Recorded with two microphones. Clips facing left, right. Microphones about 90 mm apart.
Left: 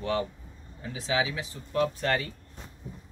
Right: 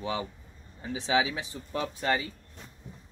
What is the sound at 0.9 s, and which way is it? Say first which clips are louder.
Speech: right 2 dB; 25° right (ahead or behind).